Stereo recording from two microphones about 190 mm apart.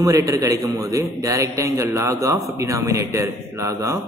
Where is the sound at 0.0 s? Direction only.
15° right (ahead or behind).